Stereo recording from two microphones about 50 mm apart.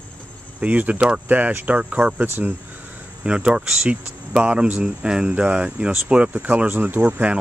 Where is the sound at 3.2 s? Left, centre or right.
Centre.